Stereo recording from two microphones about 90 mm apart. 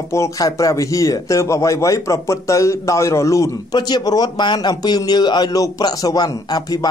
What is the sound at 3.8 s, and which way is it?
A man's voice, 50° left (ahead or behind).